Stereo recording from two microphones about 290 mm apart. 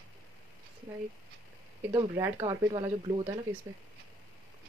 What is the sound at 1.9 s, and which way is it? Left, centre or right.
Speech, centre.